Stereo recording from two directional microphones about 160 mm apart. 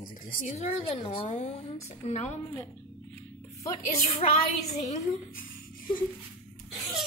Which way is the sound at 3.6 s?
40° left (ahead or behind).